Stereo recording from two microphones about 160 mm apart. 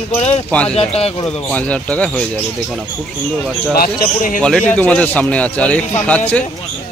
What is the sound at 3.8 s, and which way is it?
Speech, 65° left (ahead or behind).